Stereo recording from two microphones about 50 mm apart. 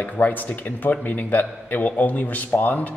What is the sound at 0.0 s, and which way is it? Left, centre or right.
A man's voice, left.